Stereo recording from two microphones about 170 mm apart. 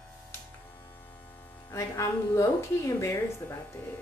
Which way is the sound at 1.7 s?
20° left (ahead or behind).